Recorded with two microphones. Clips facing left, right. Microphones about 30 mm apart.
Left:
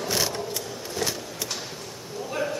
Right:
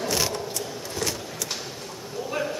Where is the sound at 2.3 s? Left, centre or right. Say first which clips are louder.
Even; centre.